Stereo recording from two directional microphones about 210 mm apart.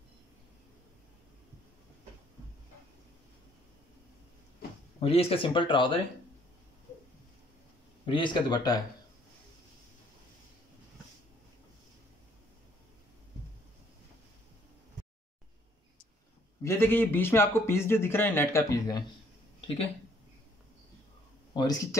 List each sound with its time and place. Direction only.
5.0 s speech: 30° left (ahead or behind)
8.0 s speech: 20° left (ahead or behind)
16.6 s a man's voice: 10° left (ahead or behind)
21.5 s a man's voice: 20° left (ahead or behind)